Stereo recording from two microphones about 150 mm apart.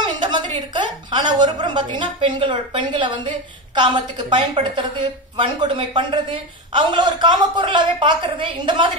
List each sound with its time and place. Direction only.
0.2 s a woman's voice: 30° right (ahead or behind)